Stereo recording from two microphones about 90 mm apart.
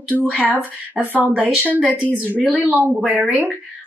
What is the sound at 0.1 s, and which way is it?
A woman's voice, 15° right (ahead or behind).